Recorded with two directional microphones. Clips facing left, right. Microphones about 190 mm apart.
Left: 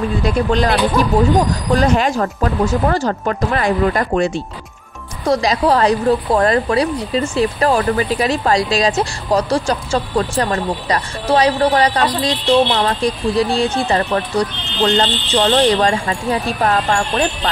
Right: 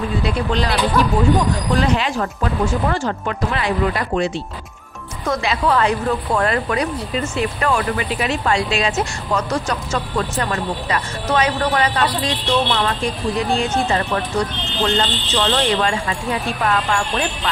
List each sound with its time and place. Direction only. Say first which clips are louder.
0.2 s speech: left 6 dB; 45° left (ahead or behind)
1.8 s speech: left 6 dB; 45° left (ahead or behind)
5.2 s speech: left 5 dB; 35° left (ahead or behind)